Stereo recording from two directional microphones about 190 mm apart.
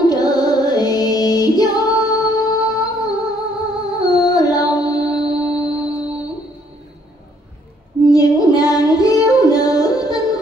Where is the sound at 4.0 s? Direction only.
20° left (ahead or behind).